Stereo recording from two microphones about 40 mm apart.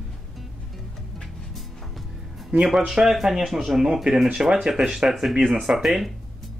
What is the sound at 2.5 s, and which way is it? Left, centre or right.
Speech, right.